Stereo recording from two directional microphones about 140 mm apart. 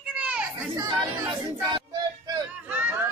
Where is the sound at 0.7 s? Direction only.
25° right (ahead or behind).